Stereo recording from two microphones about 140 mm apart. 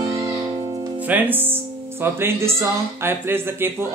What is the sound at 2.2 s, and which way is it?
Speech, 20° right (ahead or behind).